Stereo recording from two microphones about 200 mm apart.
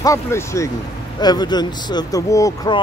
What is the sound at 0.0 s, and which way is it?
Speech, 15° left (ahead or behind).